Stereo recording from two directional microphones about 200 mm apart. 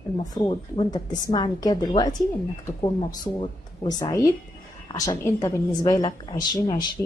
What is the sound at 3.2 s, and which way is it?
Speech, 20° left (ahead or behind).